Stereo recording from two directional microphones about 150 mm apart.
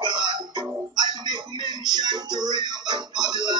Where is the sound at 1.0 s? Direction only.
30° right (ahead or behind).